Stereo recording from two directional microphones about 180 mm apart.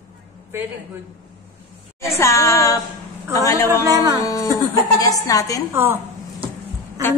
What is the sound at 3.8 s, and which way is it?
Speech, 20° right (ahead or behind).